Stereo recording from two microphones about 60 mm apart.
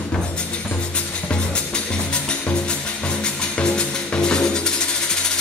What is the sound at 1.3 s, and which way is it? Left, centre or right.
Music, centre.